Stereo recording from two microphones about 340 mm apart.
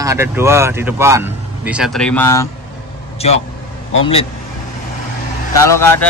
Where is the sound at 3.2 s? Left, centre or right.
Centre.